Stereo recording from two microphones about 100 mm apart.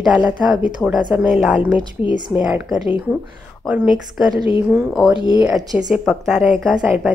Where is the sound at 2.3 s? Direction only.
15° right (ahead or behind).